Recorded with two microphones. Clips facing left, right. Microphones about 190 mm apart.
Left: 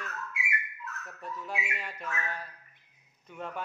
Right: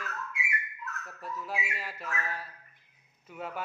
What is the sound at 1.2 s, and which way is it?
A man's voice, 5° right (ahead or behind).